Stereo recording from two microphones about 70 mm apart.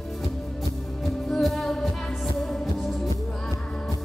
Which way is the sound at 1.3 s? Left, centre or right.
Centre.